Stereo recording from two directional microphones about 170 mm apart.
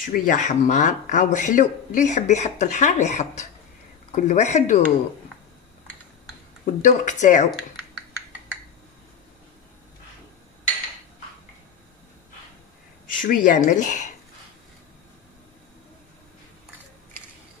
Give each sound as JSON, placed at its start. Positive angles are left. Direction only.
{"t": 0.0, "sound": "speech", "side_deg": 50}
{"t": 6.6, "sound": "speech", "side_deg": 45}
{"t": 13.0, "sound": "speech", "side_deg": 50}